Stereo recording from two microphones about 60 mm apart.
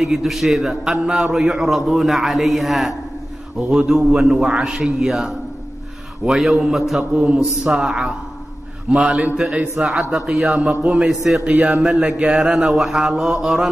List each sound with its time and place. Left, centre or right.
0.0 s a man's voice: centre
7.2 s a man's voice: centre
11.4 s a man's voice: centre
12.6 s a man's voice: centre